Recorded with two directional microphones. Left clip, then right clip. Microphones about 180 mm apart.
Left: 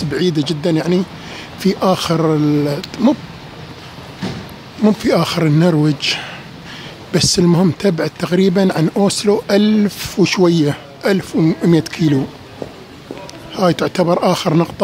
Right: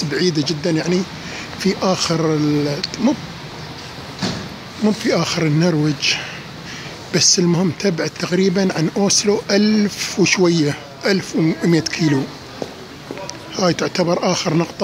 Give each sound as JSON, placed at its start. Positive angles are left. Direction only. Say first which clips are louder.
{"t": 0.1, "sound": "speech", "louder": "left 2 dB", "side_deg": 20}
{"t": 4.8, "sound": "speech", "louder": "left 4 dB", "side_deg": 20}
{"t": 13.6, "sound": "speech", "louder": "left 3 dB", "side_deg": 20}